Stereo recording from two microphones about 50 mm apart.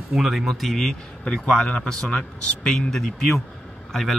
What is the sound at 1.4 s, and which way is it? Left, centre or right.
A man's voice, centre.